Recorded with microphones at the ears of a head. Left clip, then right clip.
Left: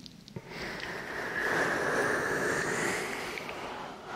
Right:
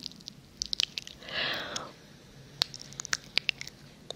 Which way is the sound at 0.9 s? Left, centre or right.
Left.